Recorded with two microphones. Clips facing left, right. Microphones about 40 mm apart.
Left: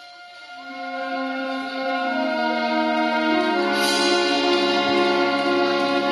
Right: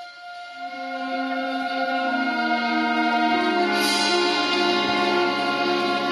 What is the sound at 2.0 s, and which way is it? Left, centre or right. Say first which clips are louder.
Music: left 1 dB; centre.